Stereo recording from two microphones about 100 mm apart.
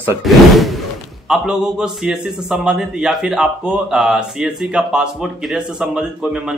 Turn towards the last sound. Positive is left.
turn(degrees=-5)  # may be behind; listen again after turning